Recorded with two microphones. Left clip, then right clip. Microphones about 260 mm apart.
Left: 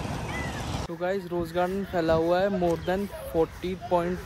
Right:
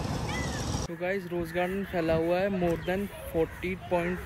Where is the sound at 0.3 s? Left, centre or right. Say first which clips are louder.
Left 1 dB; centre.